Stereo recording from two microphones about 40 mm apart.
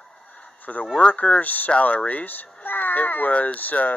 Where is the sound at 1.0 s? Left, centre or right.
Left.